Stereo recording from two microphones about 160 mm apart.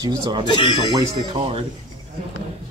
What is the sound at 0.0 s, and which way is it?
Speech, 25° right (ahead or behind).